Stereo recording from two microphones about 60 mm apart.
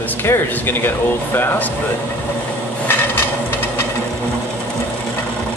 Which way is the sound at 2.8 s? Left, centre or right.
Left.